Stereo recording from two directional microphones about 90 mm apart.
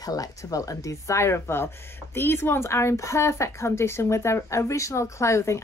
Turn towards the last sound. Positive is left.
turn(degrees=30)  # may be behind; listen again after turning